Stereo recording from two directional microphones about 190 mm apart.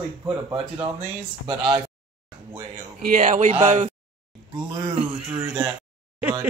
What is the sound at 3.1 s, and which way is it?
Speech, 40° right (ahead or behind).